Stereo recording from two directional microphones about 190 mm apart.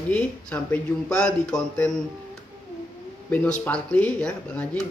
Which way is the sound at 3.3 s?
10° left (ahead or behind).